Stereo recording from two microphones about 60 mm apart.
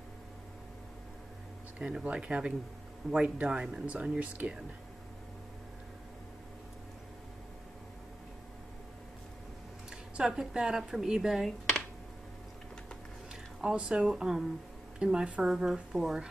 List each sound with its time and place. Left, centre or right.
1.8 s speech: centre
9.8 s speech: centre
13.3 s speech: centre